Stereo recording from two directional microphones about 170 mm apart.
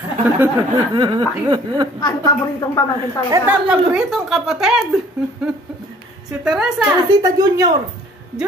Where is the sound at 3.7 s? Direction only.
5° right (ahead or behind).